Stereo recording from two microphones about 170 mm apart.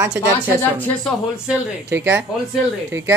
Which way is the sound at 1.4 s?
10° right (ahead or behind).